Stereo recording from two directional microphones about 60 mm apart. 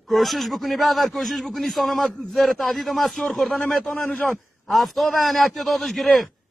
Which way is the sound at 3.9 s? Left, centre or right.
Left.